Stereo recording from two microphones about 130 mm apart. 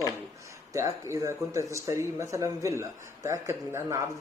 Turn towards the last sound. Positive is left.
turn(degrees=-20)  # may be behind; listen again after turning